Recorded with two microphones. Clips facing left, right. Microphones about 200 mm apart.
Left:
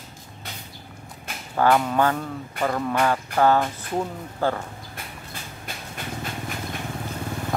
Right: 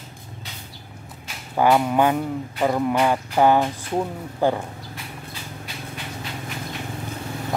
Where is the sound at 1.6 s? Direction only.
15° right (ahead or behind).